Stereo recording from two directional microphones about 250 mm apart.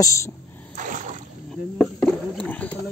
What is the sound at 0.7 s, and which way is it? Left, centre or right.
Rowboat, right.